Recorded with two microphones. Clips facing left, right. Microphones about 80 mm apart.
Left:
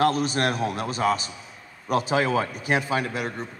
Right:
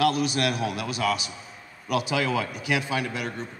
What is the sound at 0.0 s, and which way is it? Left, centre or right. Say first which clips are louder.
A man's voice: left 1 dB; left.